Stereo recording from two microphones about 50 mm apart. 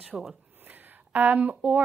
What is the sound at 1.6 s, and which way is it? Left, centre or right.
Speech, right.